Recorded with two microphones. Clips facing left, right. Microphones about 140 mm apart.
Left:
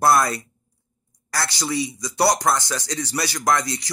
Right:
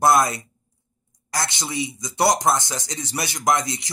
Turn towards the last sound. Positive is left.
turn(degrees=-20)  # may be behind; listen again after turning